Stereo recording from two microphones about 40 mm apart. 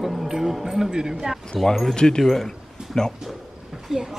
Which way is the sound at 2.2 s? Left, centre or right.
Centre.